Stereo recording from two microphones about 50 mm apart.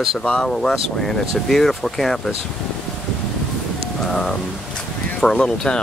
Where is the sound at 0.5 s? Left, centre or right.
Centre.